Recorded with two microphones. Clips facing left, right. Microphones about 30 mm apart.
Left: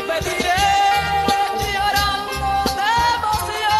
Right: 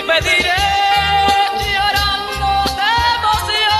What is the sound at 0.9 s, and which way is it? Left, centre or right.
Music, right.